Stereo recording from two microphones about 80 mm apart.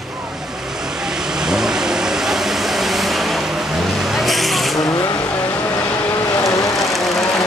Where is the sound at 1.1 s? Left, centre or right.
Centre.